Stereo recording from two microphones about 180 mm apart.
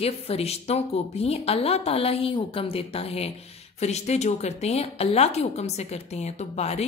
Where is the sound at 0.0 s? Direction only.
35° left (ahead or behind).